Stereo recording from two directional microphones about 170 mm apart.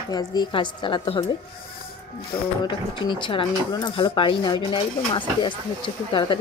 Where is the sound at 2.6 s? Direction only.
30° left (ahead or behind).